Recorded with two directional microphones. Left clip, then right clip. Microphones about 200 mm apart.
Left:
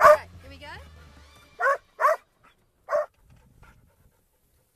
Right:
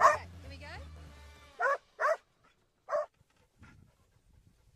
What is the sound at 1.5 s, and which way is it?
Dog, 10° right (ahead or behind).